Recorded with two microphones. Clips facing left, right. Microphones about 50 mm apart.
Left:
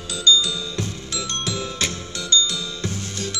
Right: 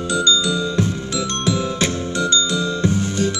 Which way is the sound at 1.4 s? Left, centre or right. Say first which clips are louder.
Right 8 dB; centre.